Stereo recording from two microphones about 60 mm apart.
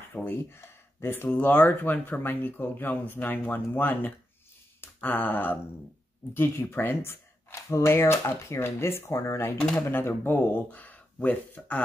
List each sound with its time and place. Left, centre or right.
0.1 s speech: left
4.8 s a sound: left
6.3 s speech: left
9.8 s speech: left